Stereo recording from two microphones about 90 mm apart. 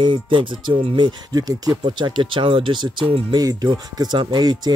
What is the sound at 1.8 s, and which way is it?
Speech, 55° right (ahead or behind).